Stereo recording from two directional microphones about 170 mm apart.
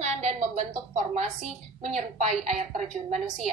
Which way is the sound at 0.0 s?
40° right (ahead or behind).